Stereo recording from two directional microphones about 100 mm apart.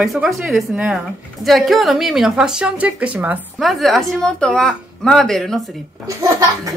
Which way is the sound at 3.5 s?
Centre (ahead or behind).